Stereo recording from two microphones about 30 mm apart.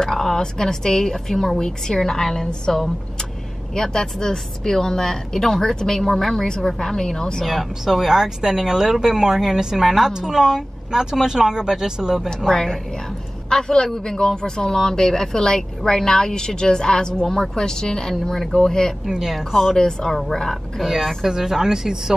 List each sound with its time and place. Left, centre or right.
0.0 s a woman's voice: centre
7.4 s speech: centre
13.5 s speech: left
19.0 s speech: centre
19.3 s speech: centre
19.8 s a woman's voice: left
21.3 s speech: centre